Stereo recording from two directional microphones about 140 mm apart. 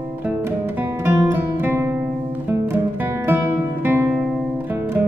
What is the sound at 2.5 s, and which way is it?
Guitar, 15° right (ahead or behind).